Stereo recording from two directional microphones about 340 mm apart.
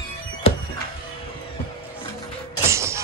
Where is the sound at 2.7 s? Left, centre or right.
Centre.